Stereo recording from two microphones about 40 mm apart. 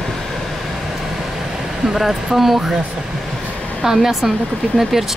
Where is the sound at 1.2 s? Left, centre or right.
Centre.